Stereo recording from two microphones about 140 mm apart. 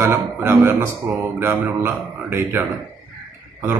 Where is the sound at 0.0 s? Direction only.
15° right (ahead or behind).